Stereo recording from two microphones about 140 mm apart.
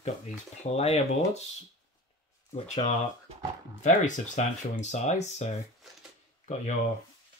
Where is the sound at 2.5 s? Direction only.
50° left (ahead or behind).